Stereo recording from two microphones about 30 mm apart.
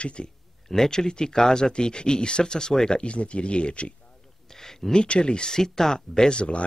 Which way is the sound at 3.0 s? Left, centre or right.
Left.